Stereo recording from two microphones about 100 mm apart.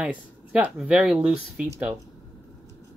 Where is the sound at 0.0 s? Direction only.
10° right (ahead or behind).